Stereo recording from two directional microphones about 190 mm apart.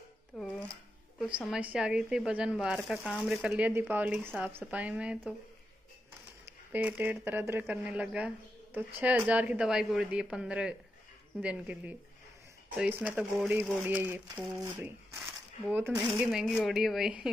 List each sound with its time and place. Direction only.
0.4 s a sound: centre (ahead or behind)
1.2 s a woman's voice: 5° right (ahead or behind)
6.4 s a woman's voice: 10° right (ahead or behind)